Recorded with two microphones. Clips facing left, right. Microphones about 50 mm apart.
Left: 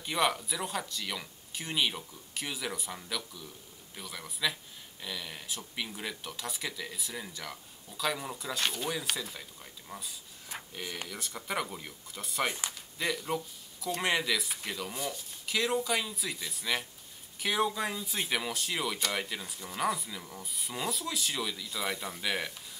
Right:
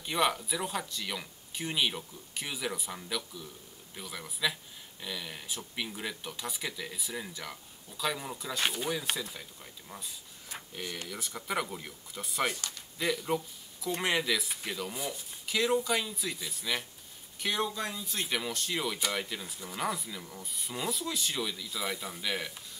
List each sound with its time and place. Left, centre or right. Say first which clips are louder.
0.0 s speech: even; centre
12.4 s speech: even; centre
12.7 s speech: right 1 dB; centre